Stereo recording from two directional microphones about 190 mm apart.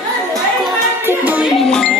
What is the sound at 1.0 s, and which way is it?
Music, 10° right (ahead or behind).